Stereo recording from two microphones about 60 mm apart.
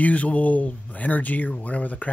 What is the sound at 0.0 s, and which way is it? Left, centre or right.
Speech, left.